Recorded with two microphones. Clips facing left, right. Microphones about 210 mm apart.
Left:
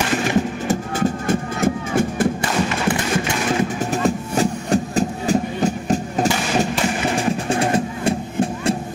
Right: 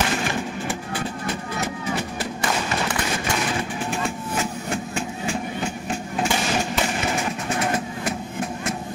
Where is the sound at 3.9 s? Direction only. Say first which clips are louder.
Left 6 dB; 35° left (ahead or behind).